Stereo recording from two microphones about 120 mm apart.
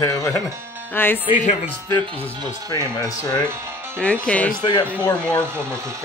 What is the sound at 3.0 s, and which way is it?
Speech, 30° left (ahead or behind).